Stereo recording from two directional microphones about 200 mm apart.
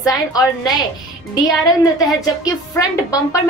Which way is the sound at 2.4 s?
15° left (ahead or behind).